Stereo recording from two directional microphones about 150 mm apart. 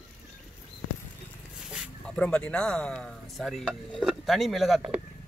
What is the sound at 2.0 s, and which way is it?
Speech, 5° left (ahead or behind).